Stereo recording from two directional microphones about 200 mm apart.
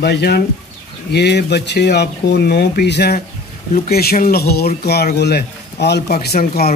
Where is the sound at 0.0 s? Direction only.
55° left (ahead or behind).